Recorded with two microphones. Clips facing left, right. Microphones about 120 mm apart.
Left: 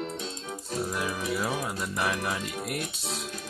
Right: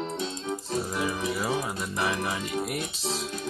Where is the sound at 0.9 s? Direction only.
Centre (ahead or behind).